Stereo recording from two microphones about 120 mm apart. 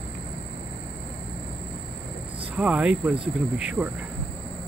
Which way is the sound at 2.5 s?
10° right (ahead or behind).